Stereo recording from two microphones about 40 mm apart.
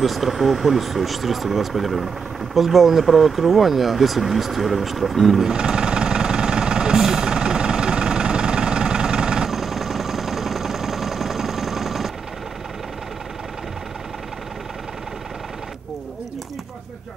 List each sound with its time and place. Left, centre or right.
0.0 s speech: centre
5.5 s vehicle: centre
9.5 s vehicle: centre